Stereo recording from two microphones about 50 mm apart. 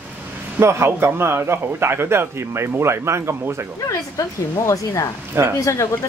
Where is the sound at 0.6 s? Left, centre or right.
Right.